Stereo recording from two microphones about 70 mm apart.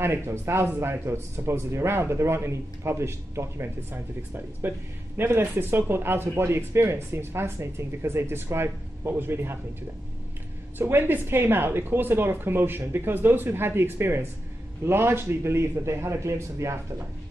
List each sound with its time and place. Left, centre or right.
0.0 s speech: right
10.8 s a woman's voice: right